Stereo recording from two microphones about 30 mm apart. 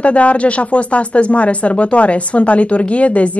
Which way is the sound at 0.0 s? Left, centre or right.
Left.